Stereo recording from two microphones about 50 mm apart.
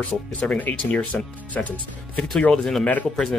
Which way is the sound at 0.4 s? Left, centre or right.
Left.